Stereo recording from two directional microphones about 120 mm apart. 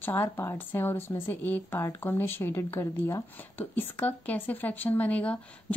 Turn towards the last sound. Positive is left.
turn(degrees=10)  # may be behind; listen again after turning